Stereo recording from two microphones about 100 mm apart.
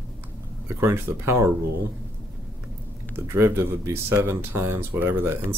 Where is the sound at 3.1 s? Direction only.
25° right (ahead or behind).